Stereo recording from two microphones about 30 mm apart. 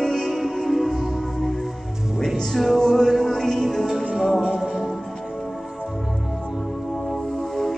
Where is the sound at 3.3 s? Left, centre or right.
Centre.